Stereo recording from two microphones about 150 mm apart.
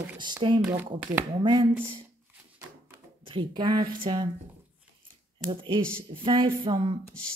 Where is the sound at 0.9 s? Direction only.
10° right (ahead or behind).